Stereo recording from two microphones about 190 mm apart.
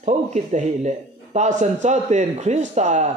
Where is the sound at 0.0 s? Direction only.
40° right (ahead or behind).